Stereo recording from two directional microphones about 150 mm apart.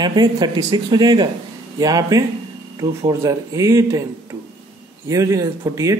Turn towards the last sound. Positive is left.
turn(degrees=-20)  # may be behind; listen again after turning